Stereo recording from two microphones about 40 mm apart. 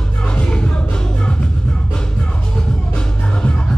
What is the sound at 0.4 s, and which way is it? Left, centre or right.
Music, left.